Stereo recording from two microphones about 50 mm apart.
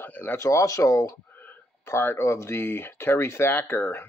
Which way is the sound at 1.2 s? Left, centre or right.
Left.